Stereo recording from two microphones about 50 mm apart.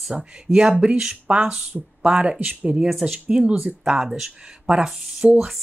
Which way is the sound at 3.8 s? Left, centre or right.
Centre.